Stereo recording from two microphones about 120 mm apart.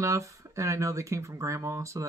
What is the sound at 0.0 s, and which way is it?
Speech, 25° right (ahead or behind).